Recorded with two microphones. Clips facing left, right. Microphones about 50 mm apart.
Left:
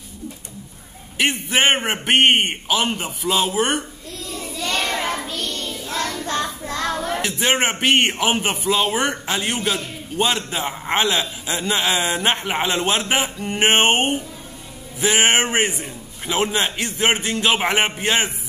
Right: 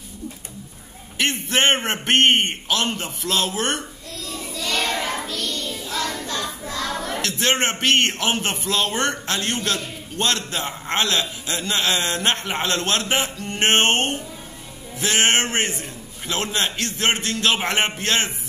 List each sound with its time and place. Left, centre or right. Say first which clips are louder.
1.1 s a man's voice: left 2 dB; centre
4.6 s children playing: left 1 dB; left
5.3 s child singing: even; left
7.0 s a man's voice: left 2 dB; centre